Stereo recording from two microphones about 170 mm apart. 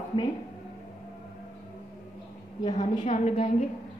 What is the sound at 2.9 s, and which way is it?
Speech, 40° left (ahead or behind).